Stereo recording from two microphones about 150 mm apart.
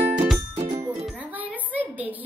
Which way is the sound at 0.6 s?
25° right (ahead or behind).